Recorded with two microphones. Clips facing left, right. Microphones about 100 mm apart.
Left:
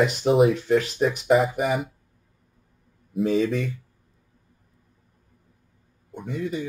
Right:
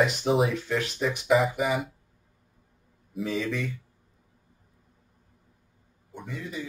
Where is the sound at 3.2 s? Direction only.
55° left (ahead or behind).